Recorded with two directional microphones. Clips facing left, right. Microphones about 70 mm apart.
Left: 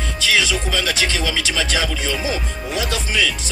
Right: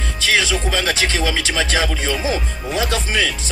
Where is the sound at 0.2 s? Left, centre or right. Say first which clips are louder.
Right 1 dB; right.